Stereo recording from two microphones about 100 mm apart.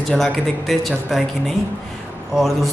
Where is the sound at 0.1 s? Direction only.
5° left (ahead or behind).